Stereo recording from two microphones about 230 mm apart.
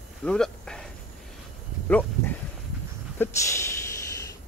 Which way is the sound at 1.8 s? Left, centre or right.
Centre.